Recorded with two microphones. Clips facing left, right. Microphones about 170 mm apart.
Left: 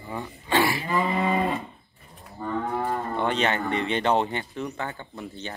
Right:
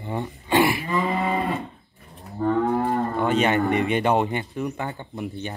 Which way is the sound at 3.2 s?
10° right (ahead or behind).